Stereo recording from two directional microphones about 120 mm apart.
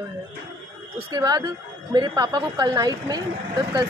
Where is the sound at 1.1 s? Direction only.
35° right (ahead or behind).